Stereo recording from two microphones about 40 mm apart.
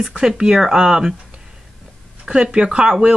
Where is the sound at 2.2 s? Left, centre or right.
Right.